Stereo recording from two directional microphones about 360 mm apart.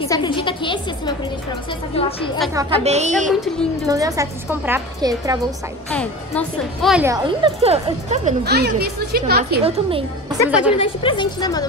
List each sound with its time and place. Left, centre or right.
0.1 s speech: centre
2.4 s speech: centre
3.3 s speech: centre
5.9 s speech: centre
10.8 s speech: centre